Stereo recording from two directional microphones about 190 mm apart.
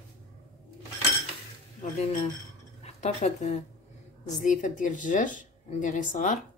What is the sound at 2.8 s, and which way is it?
Speech, 35° left (ahead or behind).